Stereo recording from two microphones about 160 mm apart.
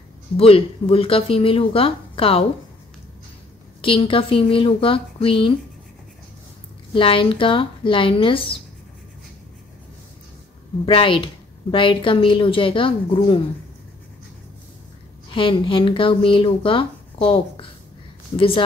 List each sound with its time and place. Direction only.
0.4 s speech: 35° left (ahead or behind)
3.8 s speech: 35° left (ahead or behind)
6.9 s speech: 35° left (ahead or behind)
10.9 s speech: 35° left (ahead or behind)
15.3 s speech: 30° left (ahead or behind)